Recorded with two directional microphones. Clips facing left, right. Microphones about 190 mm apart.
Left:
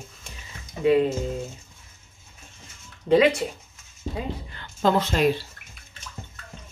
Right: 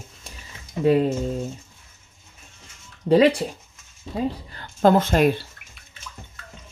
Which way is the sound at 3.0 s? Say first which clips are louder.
Right 2 dB; 35° right (ahead or behind).